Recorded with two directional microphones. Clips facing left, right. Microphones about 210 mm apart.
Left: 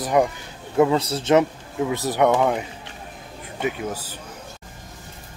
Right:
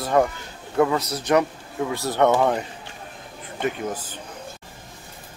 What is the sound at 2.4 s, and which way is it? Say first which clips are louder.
Speech: even; 5° left (ahead or behind).